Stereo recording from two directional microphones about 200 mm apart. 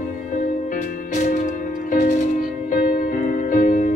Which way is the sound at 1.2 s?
40° left (ahead or behind).